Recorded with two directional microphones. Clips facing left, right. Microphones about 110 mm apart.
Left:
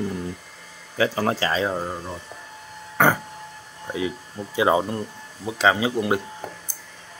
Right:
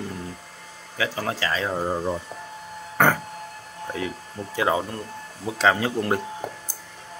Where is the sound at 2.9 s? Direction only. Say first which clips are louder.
Left 1 dB; 5° left (ahead or behind).